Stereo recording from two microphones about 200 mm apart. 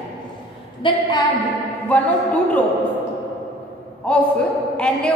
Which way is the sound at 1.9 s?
10° left (ahead or behind).